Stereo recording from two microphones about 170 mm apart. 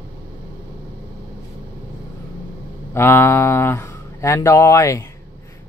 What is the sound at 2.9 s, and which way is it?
Speech, 15° left (ahead or behind).